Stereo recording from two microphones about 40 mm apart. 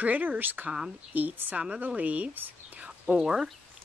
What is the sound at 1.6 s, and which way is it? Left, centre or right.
Speech, right.